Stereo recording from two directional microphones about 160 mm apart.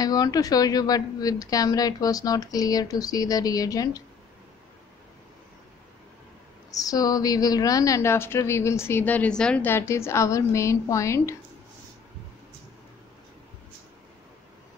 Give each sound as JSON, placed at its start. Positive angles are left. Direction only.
{"t": 0.0, "sound": "speech", "side_deg": 25}
{"t": 6.7, "sound": "a woman's voice", "side_deg": 20}